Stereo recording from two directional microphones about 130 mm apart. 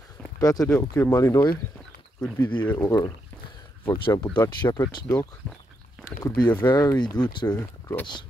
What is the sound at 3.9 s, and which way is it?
Speech, 40° left (ahead or behind).